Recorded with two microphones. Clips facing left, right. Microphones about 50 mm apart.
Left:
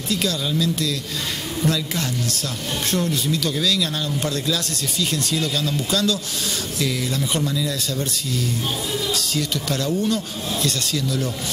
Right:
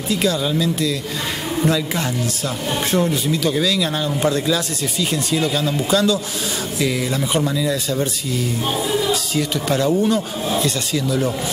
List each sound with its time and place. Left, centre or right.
0.1 s speech: centre